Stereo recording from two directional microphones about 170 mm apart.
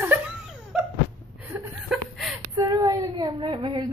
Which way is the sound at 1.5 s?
Centre (ahead or behind).